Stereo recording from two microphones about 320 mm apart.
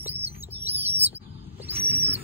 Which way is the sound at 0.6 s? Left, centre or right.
Centre.